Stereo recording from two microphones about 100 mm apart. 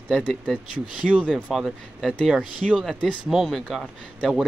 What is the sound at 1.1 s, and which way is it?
Speech, 10° right (ahead or behind).